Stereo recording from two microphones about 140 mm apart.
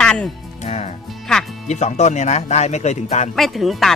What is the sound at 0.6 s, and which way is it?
Music, 50° left (ahead or behind).